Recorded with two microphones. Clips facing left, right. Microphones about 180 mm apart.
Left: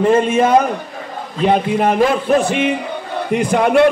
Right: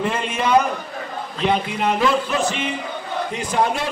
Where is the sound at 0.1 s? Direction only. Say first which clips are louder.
Left 7 dB; 45° left (ahead or behind).